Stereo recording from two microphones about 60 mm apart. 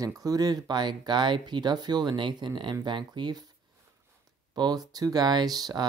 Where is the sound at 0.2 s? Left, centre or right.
Right.